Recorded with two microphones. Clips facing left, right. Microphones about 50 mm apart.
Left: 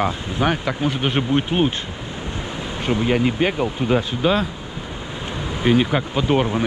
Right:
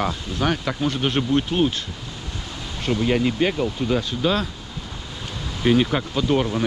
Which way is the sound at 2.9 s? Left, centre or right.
Centre.